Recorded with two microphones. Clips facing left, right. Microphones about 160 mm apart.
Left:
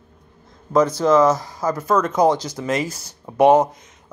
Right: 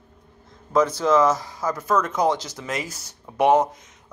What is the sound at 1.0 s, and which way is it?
Speech, 35° left (ahead or behind).